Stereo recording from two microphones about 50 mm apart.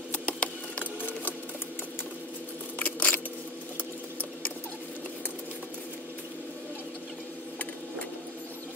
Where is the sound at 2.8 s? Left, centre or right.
Left.